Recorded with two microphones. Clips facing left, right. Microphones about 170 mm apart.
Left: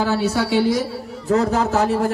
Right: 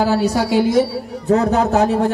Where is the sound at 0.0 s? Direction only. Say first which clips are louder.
Right 3 dB; 40° right (ahead or behind).